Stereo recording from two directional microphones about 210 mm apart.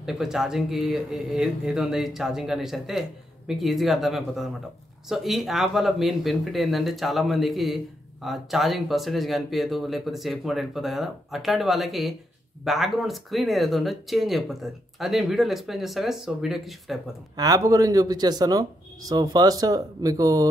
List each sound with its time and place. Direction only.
0.0 s speech: centre (ahead or behind)
17.4 s speech: 15° right (ahead or behind)